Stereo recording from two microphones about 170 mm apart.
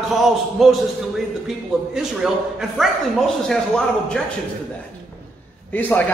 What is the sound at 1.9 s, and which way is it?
A man's voice, centre (ahead or behind).